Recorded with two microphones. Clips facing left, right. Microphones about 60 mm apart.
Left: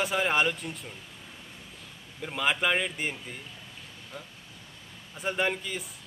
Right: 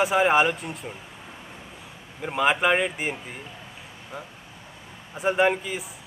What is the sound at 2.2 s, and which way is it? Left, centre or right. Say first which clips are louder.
Speech: right 6 dB; centre.